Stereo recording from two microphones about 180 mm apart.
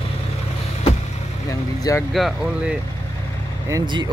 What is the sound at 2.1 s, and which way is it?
Speech, centre (ahead or behind).